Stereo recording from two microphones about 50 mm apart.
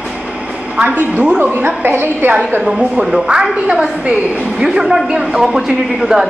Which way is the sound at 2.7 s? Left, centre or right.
Centre.